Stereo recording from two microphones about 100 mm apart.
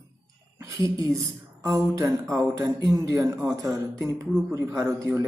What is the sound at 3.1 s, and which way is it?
Speech, 30° right (ahead or behind).